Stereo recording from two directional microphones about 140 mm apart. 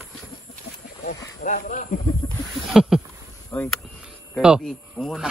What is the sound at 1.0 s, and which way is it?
Speech, 65° left (ahead or behind).